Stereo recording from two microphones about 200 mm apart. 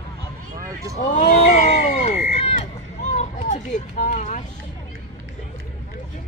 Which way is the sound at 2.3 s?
30° left (ahead or behind).